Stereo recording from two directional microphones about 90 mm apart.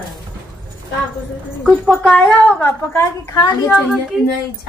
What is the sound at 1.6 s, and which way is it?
Speech, centre (ahead or behind).